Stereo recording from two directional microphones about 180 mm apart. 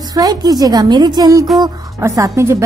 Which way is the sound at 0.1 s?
20° right (ahead or behind).